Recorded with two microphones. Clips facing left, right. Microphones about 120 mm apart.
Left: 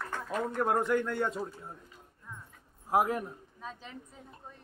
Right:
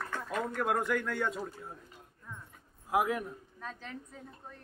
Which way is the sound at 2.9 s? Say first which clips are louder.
Left 2 dB; 40° left (ahead or behind).